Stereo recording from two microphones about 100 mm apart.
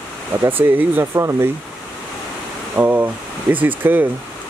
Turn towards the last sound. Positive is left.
turn(degrees=-20)  # may be behind; listen again after turning